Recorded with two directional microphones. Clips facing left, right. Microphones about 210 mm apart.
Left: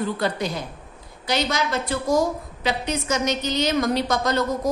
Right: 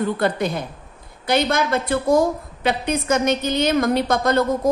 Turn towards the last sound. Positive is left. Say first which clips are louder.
# right 4 dB
turn(degrees=-55)  # may be behind; listen again after turning